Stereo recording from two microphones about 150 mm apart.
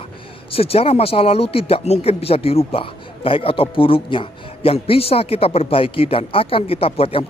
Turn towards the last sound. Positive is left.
turn(degrees=40)  # may be behind; listen again after turning